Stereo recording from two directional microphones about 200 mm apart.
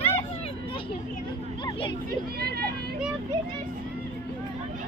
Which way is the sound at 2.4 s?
50° right (ahead or behind).